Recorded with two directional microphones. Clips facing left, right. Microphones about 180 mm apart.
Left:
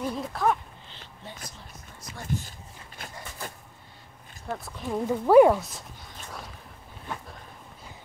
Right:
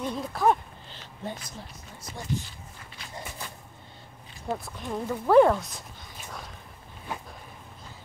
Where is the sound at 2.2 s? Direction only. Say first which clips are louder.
Left 1 dB; 45° left (ahead or behind).